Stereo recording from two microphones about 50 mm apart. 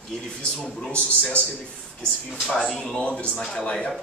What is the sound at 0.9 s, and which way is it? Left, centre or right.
Speech, left.